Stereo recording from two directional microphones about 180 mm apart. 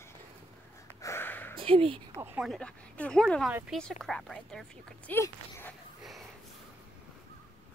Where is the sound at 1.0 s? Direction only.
15° left (ahead or behind).